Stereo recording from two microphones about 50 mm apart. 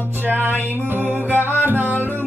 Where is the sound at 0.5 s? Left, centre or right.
Left.